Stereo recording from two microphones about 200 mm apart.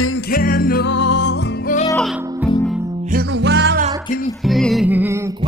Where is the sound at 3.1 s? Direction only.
60° right (ahead or behind).